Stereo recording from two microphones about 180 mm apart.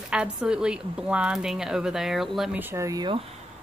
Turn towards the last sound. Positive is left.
turn(degrees=-25)  # may be behind; listen again after turning